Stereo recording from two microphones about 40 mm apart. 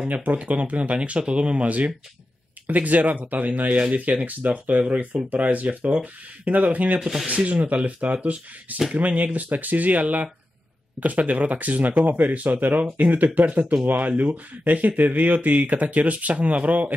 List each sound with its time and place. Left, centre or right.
0.1 s speech: right
7.0 s speech: centre
7.2 s speech: right